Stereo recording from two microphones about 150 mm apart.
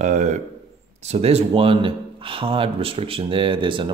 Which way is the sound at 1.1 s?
45° right (ahead or behind).